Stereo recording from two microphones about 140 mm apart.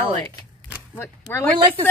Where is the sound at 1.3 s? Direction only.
15° left (ahead or behind).